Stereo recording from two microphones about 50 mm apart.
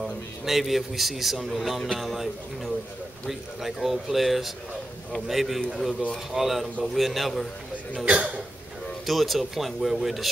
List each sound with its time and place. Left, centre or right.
0.0 s a man's voice: centre
8.0 s speech: right
9.0 s a man's voice: centre